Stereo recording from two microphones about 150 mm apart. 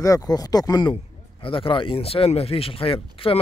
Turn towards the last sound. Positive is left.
turn(degrees=35)  # may be behind; listen again after turning